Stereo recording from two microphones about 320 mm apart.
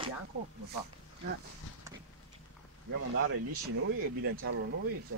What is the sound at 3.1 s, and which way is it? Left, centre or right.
Speech, right.